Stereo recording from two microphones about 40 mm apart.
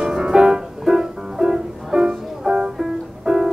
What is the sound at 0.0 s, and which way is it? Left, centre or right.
Music, centre.